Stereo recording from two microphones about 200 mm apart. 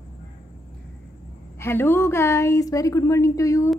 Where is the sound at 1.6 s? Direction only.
10° left (ahead or behind).